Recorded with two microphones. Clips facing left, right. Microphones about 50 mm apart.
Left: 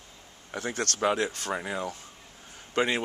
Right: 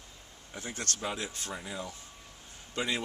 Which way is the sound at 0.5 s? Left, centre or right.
Left.